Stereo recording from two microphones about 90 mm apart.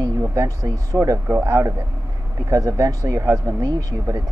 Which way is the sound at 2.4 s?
40° right (ahead or behind).